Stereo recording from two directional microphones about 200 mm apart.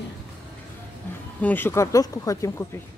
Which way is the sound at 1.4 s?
10° left (ahead or behind).